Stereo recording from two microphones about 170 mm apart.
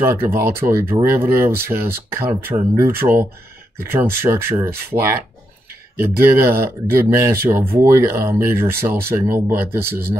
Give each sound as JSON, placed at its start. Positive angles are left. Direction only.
{"t": 0.0, "sound": "speech", "side_deg": -15}
{"t": 9.8, "sound": "speech", "side_deg": -65}